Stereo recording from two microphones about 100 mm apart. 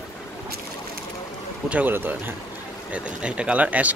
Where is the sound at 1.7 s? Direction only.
20° right (ahead or behind).